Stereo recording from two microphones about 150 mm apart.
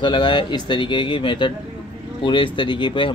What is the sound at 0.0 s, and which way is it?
Speech, 35° left (ahead or behind).